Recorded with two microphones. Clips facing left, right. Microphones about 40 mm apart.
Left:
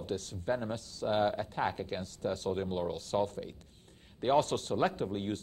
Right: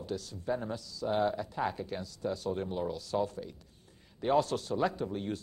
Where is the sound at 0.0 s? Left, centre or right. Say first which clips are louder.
Left 1 dB; left.